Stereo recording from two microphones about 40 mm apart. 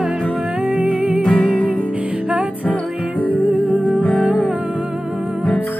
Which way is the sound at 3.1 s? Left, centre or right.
Left.